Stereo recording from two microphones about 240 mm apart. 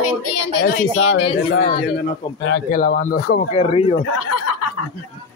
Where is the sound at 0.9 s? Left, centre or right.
Left.